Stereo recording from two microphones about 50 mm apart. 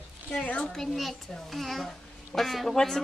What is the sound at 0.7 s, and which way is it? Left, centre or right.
A child's voice, centre.